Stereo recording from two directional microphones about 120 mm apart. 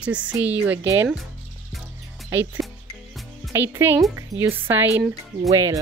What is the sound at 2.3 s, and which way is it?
Speech, 20° right (ahead or behind).